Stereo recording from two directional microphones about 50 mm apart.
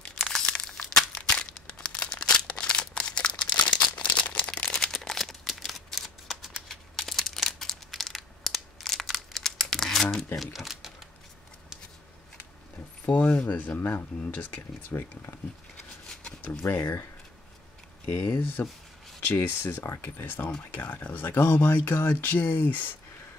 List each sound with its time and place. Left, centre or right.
0.0 s crumpling: centre
10.3 s speech: centre
13.1 s speech: left
14.9 s speech: left
18.0 s speech: left
22.1 s speech: left